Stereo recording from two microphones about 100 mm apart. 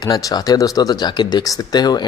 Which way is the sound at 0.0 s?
40° left (ahead or behind).